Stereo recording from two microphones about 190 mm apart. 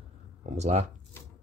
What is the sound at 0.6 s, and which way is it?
Speech, 35° right (ahead or behind).